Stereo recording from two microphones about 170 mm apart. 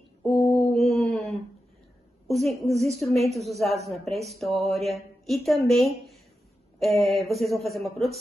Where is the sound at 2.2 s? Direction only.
Centre (ahead or behind).